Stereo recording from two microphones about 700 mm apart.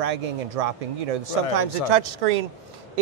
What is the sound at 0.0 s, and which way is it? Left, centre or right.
A man's voice, right.